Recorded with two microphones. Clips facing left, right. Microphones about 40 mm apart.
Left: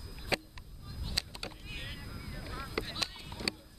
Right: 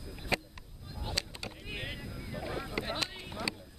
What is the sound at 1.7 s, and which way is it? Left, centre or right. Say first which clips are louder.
Vehicle: right 4 dB; centre.